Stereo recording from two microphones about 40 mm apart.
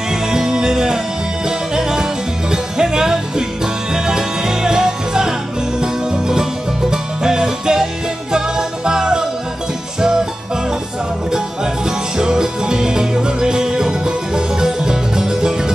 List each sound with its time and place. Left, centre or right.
0.1 s music: centre
12.2 s music: centre